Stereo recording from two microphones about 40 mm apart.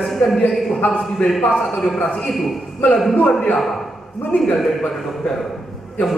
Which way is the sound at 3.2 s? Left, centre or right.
Left.